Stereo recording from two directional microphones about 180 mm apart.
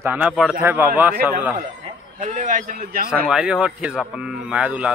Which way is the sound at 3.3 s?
5° right (ahead or behind).